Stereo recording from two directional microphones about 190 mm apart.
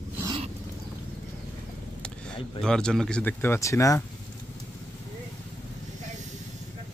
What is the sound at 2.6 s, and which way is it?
Speech, 5° left (ahead or behind).